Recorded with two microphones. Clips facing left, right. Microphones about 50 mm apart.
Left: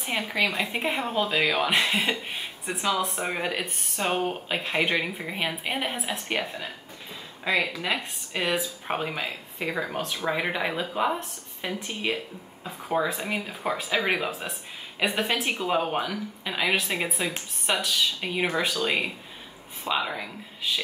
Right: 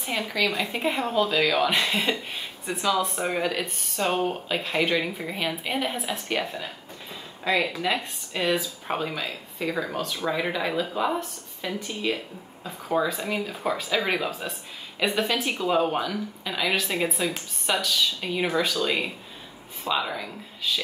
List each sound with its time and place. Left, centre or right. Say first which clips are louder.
0.0 s a woman's voice: even; left
8.3 s speech: right 2 dB; centre
12.6 s a woman's voice: right 1 dB; centre